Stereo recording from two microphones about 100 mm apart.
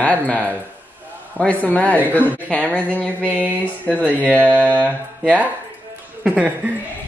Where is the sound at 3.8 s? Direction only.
15° right (ahead or behind).